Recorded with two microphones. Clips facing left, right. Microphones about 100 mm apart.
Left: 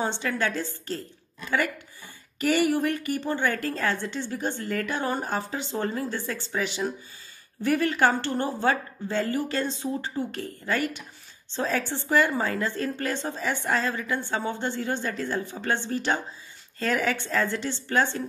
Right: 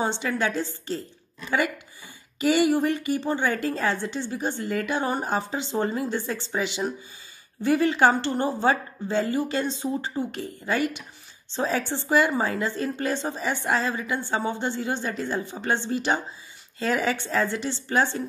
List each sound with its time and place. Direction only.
0.0 s a woman's voice: 15° right (ahead or behind)
2.3 s a woman's voice: 15° right (ahead or behind)